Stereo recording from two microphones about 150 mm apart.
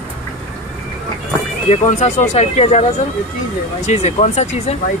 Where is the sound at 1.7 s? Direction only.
50° left (ahead or behind).